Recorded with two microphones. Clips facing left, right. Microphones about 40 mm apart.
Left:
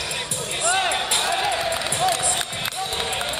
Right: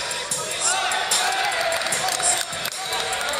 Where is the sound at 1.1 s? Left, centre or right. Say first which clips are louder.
Even; left.